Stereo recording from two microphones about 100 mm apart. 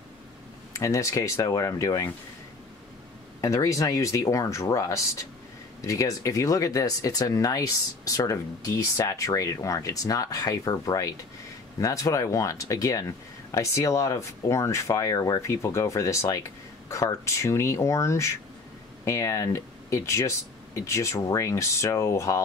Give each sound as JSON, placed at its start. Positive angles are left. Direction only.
{"t": 0.7, "sound": "speech", "side_deg": 30}
{"t": 3.3, "sound": "speech", "side_deg": 30}